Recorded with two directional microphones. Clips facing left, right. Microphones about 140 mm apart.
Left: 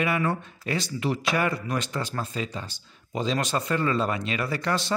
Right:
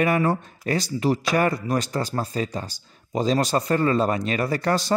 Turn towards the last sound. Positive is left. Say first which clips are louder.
# right 4 dB
turn(degrees=-40)  # may be behind; listen again after turning